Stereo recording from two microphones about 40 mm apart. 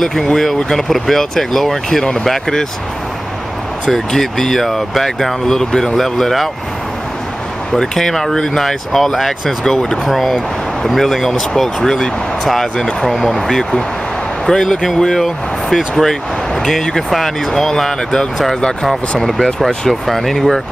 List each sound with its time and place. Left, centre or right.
0.0 s speech: centre
3.8 s speech: centre
7.7 s speech: centre
13.5 s speech: centre
18.9 s speech: centre